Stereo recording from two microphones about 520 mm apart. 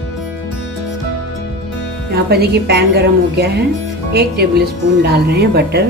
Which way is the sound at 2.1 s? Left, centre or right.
Centre.